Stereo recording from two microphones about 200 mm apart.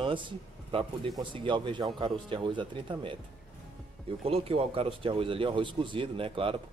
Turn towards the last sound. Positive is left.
turn(degrees=-25)  # may be behind; listen again after turning